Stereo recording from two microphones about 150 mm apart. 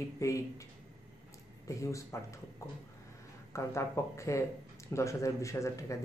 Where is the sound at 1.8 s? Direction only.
20° left (ahead or behind).